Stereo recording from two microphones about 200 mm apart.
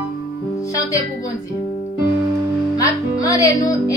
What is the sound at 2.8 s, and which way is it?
Speech, 15° left (ahead or behind).